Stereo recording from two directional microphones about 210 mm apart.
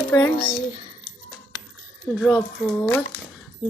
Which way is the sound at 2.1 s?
5° left (ahead or behind).